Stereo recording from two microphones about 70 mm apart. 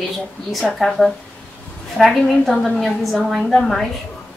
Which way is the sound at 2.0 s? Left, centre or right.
Centre.